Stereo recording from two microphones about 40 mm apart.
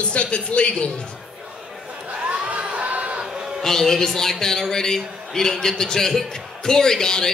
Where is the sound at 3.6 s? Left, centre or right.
Centre.